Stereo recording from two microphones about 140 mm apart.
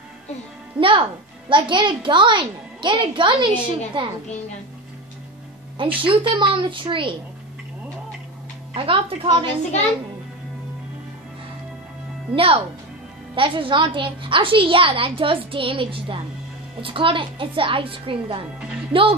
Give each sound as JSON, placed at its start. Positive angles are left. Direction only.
{"t": 0.7, "sound": "a woman's voice", "side_deg": -35}
{"t": 6.0, "sound": "a woman's voice", "side_deg": -35}
{"t": 8.7, "sound": "a woman's voice", "side_deg": -40}
{"t": 12.4, "sound": "a woman's voice", "side_deg": -40}